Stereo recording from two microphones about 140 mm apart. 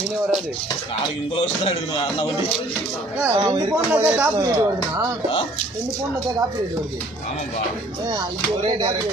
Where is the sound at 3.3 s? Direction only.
30° right (ahead or behind).